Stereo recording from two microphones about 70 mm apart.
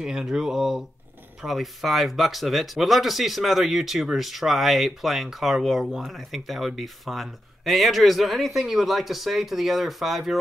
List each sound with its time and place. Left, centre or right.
0.0 s speech: centre